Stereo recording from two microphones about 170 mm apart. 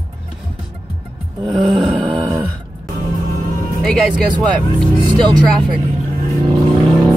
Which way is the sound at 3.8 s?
Centre (ahead or behind).